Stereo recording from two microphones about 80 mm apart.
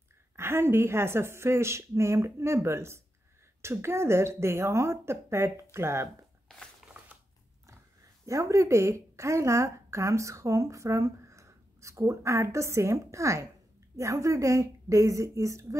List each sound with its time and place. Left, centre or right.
0.4 s a woman's voice: right
8.3 s a woman's voice: right